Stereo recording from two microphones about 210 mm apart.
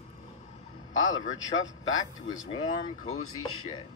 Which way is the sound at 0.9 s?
70° left (ahead or behind).